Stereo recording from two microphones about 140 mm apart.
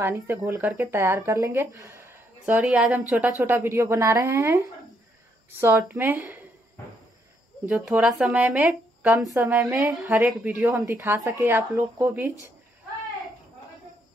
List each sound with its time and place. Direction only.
0.0 s speech: 15° right (ahead or behind)
5.6 s speech: 15° right (ahead or behind)
7.6 s speech: 10° right (ahead or behind)
9.8 s speech: centre (ahead or behind)